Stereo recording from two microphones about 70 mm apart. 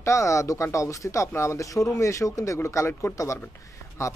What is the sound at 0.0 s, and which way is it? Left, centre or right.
A woman's voice, left.